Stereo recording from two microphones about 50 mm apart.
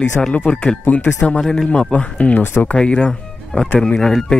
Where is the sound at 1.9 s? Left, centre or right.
Left.